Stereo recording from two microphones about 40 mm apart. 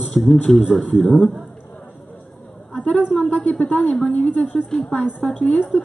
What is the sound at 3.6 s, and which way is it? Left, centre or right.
Speech, left.